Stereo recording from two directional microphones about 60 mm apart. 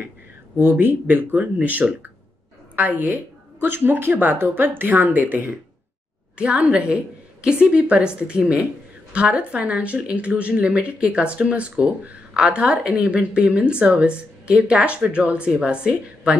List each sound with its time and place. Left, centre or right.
0.6 s a woman's voice: right